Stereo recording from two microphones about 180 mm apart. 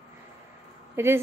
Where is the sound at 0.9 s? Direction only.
15° right (ahead or behind).